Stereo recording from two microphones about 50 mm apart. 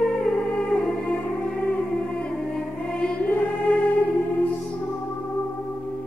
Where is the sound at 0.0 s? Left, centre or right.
Centre.